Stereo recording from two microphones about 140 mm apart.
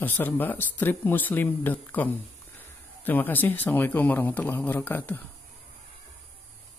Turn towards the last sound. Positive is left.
turn(degrees=15)  # may be behind; listen again after turning